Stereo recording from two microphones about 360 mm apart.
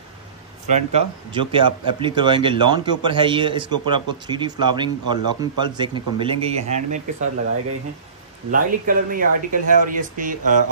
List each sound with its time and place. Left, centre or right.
0.7 s speech: centre
8.5 s speech: right